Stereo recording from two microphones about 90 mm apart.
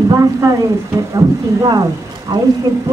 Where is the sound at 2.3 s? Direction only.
55° right (ahead or behind).